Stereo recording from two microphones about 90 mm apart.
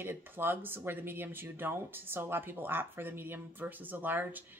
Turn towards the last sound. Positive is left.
turn(degrees=-20)  # may be behind; listen again after turning